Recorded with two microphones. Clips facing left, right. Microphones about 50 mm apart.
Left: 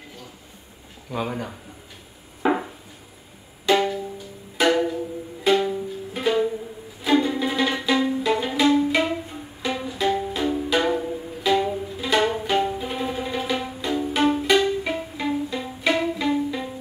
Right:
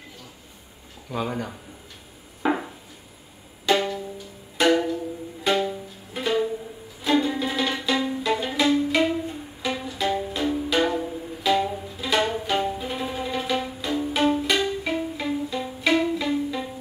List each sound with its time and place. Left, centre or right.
1.1 s speech: centre
2.4 s a sound: centre
3.6 s music: centre